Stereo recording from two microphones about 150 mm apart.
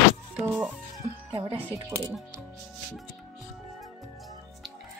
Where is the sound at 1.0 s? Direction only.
50° right (ahead or behind).